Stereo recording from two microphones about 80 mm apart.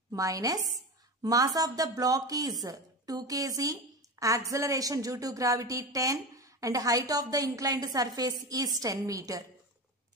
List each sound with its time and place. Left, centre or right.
0.1 s a woman's voice: right